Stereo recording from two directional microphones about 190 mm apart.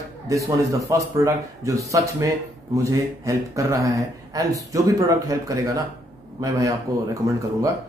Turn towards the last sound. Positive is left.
turn(degrees=-15)  # may be behind; listen again after turning